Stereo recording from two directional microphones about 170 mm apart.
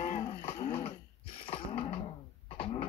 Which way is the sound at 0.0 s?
45° left (ahead or behind).